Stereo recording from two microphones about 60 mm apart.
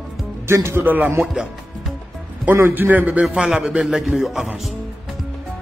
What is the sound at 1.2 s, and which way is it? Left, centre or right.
Speech, centre.